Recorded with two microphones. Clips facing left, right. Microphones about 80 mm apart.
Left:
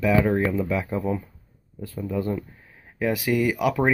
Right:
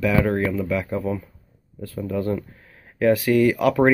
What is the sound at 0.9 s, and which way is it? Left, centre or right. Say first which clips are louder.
Speech: right 1 dB; centre.